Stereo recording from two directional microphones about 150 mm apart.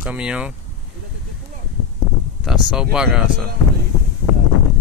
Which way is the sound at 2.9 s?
5° right (ahead or behind).